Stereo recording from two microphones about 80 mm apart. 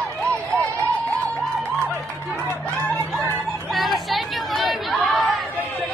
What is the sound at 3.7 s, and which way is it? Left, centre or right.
Chatter, centre.